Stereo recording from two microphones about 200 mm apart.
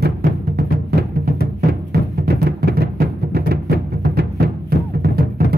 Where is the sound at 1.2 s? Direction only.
45° right (ahead or behind).